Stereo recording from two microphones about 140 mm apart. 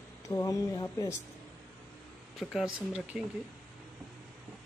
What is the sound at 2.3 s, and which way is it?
Speech, centre (ahead or behind).